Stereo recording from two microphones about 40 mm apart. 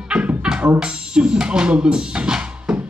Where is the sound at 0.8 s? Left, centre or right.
Right.